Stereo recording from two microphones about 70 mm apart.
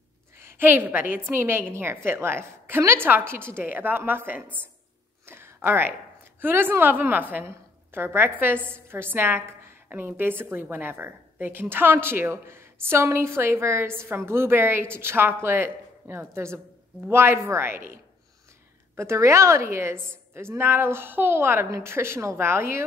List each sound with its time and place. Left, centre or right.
0.4 s a woman's voice: right
5.2 s a sound: right
6.4 s a woman's voice: right